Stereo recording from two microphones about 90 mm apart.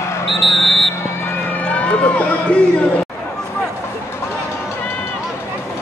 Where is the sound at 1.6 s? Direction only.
15° left (ahead or behind).